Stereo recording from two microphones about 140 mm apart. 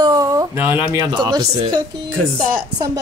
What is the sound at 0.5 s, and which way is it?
Speech, 15° right (ahead or behind).